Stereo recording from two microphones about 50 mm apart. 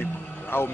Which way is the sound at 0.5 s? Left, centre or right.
Left.